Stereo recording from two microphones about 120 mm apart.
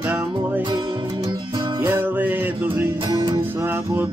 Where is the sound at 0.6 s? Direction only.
40° right (ahead or behind).